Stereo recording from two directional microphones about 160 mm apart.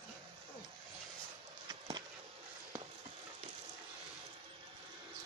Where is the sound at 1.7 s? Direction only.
25° right (ahead or behind).